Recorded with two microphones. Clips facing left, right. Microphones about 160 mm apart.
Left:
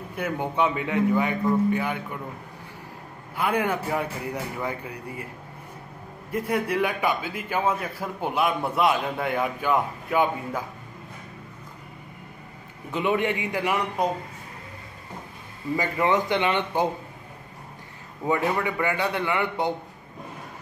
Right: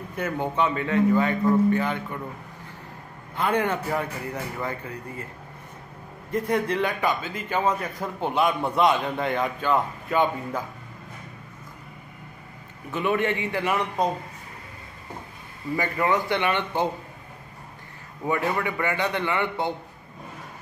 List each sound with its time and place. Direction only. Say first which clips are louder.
0.1 s a man's voice: right 1 dB; 10° left (ahead or behind)
3.3 s a man's voice: right 1 dB; 10° left (ahead or behind)
6.3 s a man's voice: right 1 dB; 10° left (ahead or behind)
12.9 s a man's voice: even; 15° left (ahead or behind)
15.7 s a man's voice: left 1 dB; 20° left (ahead or behind)
18.2 s a man's voice: left 1 dB; 20° left (ahead or behind)